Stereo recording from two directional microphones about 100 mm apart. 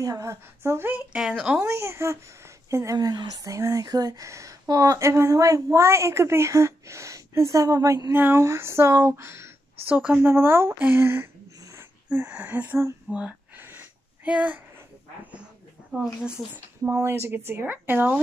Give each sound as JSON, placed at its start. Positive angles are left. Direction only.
{"t": 0.0, "sound": "speech", "side_deg": -35}
{"t": 0.9, "sound": "speech", "side_deg": -5}
{"t": 1.6, "sound": "speech", "side_deg": -25}
{"t": 3.0, "sound": "speech", "side_deg": -45}
{"t": 12.1, "sound": "speech", "side_deg": -10}
{"t": 13.6, "sound": "a sound", "side_deg": -20}
{"t": 15.9, "sound": "speech", "side_deg": -5}
{"t": 16.9, "sound": "speech", "side_deg": -25}